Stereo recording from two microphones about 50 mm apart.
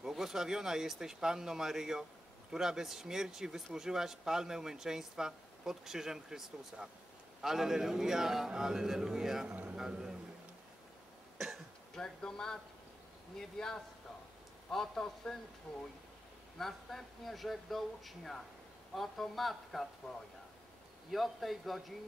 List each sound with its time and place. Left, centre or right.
0.0 s speech: centre
11.3 s cough: centre
11.9 s speech: centre
16.5 s speech: centre
21.1 s speech: centre